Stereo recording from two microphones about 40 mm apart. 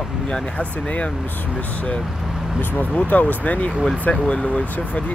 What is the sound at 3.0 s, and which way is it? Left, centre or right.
Speech, left.